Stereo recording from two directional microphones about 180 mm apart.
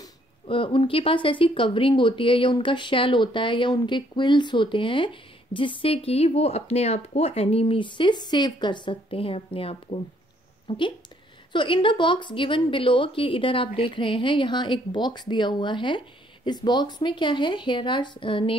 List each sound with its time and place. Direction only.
0.0 s speech: 30° left (ahead or behind)